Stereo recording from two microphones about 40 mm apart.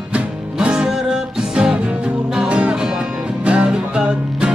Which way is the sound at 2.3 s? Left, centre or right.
Right.